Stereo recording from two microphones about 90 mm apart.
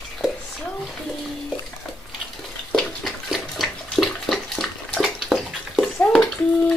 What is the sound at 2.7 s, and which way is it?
Bathtub, 5° left (ahead or behind).